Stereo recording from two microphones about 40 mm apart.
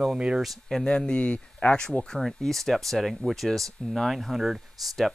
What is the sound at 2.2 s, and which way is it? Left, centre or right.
Speech, centre.